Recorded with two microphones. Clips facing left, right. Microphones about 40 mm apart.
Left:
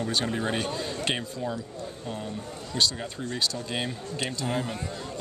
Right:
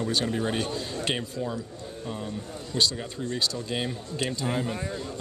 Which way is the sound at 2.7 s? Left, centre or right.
Centre.